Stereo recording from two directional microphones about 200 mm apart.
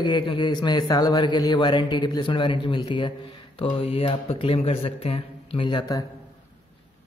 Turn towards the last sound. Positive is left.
turn(degrees=20)  # may be behind; listen again after turning